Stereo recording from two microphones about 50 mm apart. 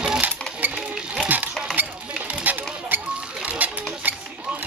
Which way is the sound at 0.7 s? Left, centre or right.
Centre.